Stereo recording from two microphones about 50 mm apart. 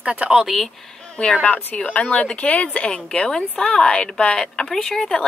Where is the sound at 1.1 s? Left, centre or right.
Left.